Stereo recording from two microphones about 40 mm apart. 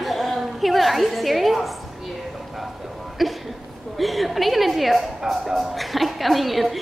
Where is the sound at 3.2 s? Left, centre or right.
Centre.